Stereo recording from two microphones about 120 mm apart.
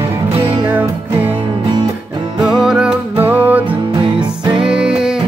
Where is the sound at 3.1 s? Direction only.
15° right (ahead or behind).